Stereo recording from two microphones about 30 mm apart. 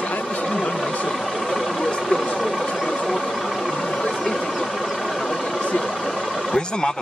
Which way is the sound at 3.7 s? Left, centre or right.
Left.